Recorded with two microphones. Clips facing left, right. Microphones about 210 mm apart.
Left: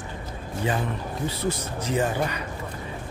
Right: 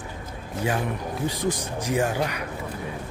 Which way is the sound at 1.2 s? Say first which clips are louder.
Right 1 dB; 15° right (ahead or behind).